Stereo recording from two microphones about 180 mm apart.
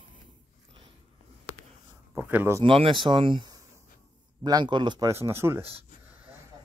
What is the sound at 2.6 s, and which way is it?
Speech, 30° right (ahead or behind).